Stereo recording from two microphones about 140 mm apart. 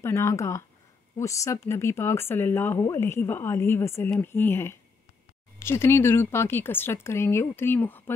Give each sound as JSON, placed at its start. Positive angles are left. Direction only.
{"t": 0.0, "sound": "speech", "side_deg": 20}